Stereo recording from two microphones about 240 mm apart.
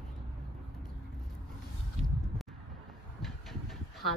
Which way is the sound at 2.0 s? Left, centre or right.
Right.